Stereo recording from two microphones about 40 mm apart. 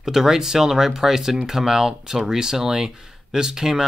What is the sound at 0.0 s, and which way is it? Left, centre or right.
Speech, centre.